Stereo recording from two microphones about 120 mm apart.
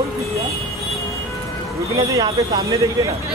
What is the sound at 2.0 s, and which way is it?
Speech, 25° right (ahead or behind).